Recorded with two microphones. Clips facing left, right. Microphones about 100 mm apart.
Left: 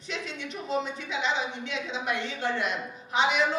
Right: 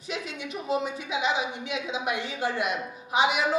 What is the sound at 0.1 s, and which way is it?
A woman's voice, 10° right (ahead or behind).